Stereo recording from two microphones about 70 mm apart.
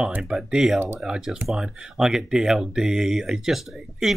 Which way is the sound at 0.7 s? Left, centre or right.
Right.